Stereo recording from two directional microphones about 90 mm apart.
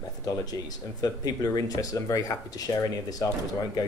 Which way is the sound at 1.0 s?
45° left (ahead or behind).